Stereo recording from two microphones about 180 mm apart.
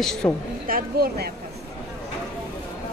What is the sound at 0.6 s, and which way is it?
Speech, 55° right (ahead or behind).